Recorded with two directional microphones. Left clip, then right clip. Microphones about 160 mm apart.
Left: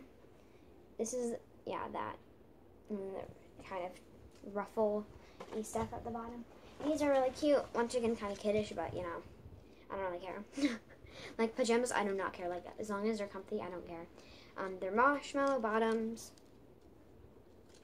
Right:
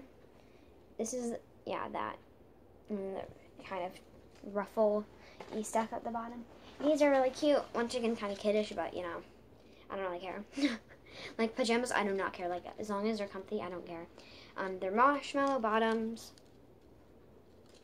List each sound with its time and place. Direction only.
0.9 s a woman's voice: 15° right (ahead or behind)
5.6 s a woman's voice: 45° right (ahead or behind)
7.0 s a woman's voice: 35° right (ahead or behind)
7.3 s a woman's voice: 10° right (ahead or behind)